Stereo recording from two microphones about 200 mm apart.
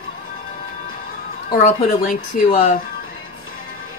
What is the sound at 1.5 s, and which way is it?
A woman's voice, 45° left (ahead or behind).